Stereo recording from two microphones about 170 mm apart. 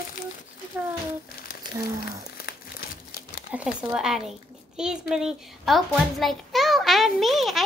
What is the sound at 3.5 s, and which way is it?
A woman's voice, 5° right (ahead or behind).